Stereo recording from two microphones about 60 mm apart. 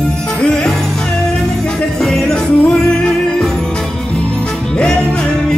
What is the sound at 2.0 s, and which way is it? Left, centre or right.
Music, centre.